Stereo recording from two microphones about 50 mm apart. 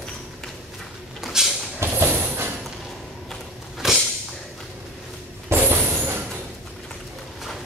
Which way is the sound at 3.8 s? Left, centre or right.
Centre.